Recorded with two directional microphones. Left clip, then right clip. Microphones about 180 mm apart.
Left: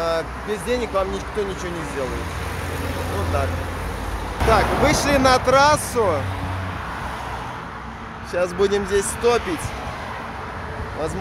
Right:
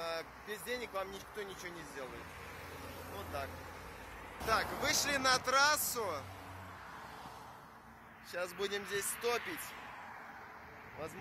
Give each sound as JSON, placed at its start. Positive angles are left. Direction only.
{"t": 0.0, "sound": "speech", "side_deg": -5}
{"t": 4.5, "sound": "speech", "side_deg": 0}
{"t": 5.9, "sound": "speech", "side_deg": -15}
{"t": 8.4, "sound": "speech", "side_deg": 5}